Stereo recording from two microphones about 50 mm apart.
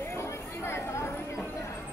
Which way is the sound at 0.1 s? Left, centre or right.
Left.